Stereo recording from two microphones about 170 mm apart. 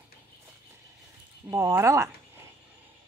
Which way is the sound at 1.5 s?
15° right (ahead or behind).